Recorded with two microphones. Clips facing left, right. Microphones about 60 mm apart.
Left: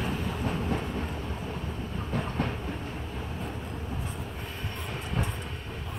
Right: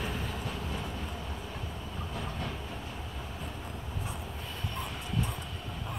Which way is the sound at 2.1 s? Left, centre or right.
Left.